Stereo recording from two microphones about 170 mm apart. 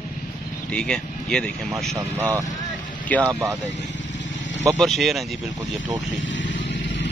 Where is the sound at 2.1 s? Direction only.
15° right (ahead or behind).